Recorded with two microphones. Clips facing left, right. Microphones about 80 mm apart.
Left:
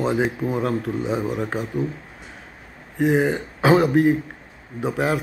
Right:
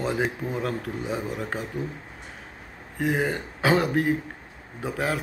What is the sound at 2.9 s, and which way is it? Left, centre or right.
Speech, left.